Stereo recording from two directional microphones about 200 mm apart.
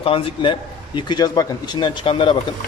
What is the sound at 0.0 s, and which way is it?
A man's voice, 25° left (ahead or behind).